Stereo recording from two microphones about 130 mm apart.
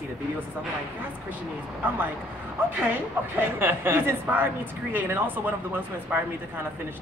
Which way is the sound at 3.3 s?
15° right (ahead or behind).